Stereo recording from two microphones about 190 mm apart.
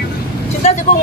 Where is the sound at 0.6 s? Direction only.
35° left (ahead or behind).